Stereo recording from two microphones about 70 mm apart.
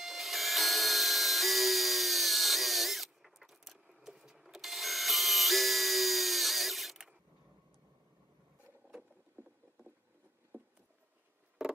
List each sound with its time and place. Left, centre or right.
0.0 s dental drill: centre
9.4 s rowboat: right
10.5 s a sound: right